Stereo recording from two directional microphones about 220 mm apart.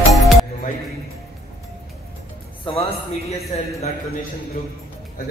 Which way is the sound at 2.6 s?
25° left (ahead or behind).